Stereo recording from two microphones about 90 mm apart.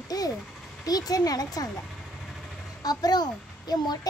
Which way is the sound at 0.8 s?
45° left (ahead or behind).